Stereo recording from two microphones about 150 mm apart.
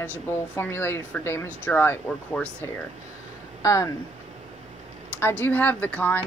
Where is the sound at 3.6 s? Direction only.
20° left (ahead or behind).